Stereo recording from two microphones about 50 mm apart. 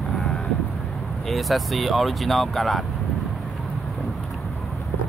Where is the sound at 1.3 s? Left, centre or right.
Centre.